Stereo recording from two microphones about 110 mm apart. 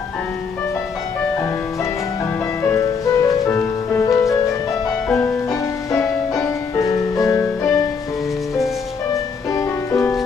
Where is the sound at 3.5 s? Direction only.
15° left (ahead or behind).